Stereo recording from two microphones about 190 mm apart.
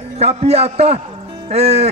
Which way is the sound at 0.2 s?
30° right (ahead or behind).